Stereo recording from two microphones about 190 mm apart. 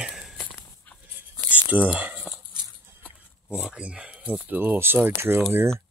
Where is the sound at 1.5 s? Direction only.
10° right (ahead or behind).